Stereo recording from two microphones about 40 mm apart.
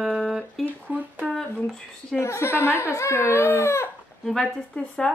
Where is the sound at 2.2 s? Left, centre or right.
Left.